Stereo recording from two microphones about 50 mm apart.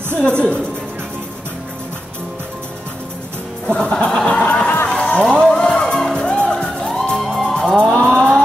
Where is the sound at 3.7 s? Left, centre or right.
Centre.